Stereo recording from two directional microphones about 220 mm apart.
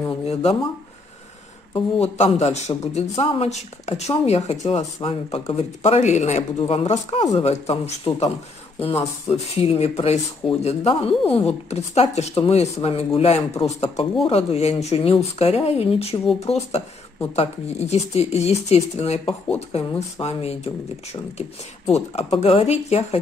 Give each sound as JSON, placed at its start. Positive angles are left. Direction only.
{"t": 0.2, "sound": "speech", "side_deg": 30}
{"t": 2.0, "sound": "a man's voice", "side_deg": 30}
{"t": 9.3, "sound": "speech", "side_deg": 30}